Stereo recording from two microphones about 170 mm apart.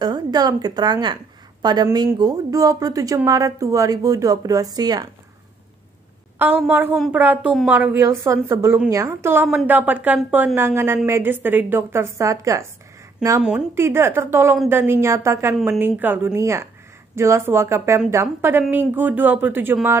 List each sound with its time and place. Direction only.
0.0 s speech: 25° right (ahead or behind)
6.3 s speech: 10° right (ahead or behind)
13.4 s speech: 5° right (ahead or behind)